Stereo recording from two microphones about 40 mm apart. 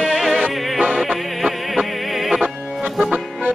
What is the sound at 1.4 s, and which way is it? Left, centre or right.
Music, centre.